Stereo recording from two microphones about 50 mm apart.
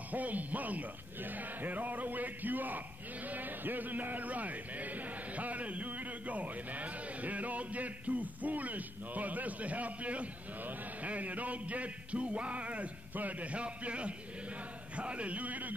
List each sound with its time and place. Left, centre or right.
0.1 s a man's voice: right